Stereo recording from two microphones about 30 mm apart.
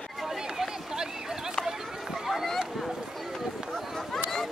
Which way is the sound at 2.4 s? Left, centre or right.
Centre.